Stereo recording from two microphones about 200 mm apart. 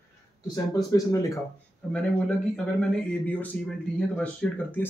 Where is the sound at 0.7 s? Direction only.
15° left (ahead or behind).